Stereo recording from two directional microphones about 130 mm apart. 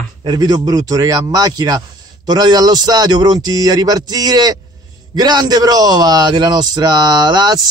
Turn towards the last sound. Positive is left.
turn(degrees=-30)  # may be behind; listen again after turning